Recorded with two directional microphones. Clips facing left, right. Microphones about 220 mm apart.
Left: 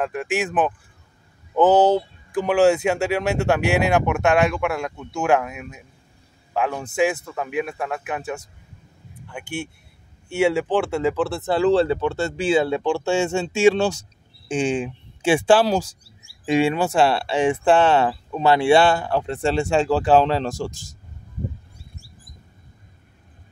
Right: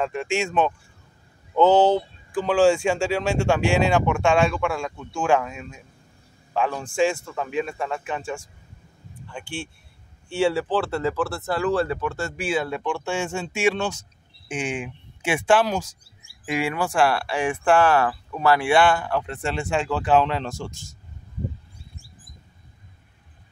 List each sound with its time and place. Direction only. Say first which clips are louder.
0.0 s speech: left 1 dB; 5° left (ahead or behind)
1.5 s a man's voice: left 1 dB; 15° left (ahead or behind)
10.4 s speech: left 2 dB; 15° left (ahead or behind); by 20.7 s 35° left (ahead or behind)